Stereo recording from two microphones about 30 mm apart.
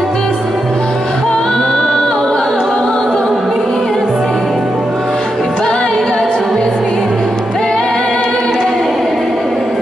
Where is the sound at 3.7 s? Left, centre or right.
Centre.